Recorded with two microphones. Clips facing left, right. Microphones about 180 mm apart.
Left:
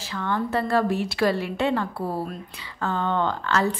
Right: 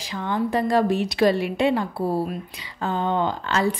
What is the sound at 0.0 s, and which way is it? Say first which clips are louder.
A woman's voice: right 2 dB; 15° right (ahead or behind).